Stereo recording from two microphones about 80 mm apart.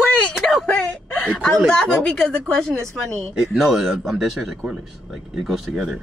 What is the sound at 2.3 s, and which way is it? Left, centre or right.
Speech, centre.